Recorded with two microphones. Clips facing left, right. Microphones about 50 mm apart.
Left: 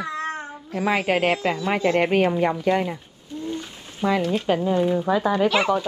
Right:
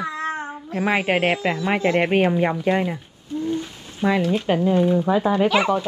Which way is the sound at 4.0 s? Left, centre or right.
Centre.